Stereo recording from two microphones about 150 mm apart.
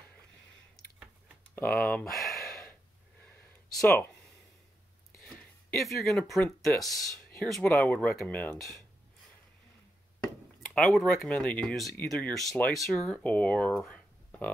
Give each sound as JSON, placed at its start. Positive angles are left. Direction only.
{"t": 1.7, "sound": "speech", "side_deg": 5}
{"t": 3.3, "sound": "a sound", "side_deg": 10}
{"t": 5.8, "sound": "speech", "side_deg": 0}
{"t": 10.7, "sound": "speech", "side_deg": 5}